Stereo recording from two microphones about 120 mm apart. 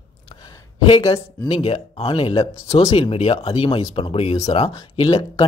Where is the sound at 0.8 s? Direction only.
45° left (ahead or behind).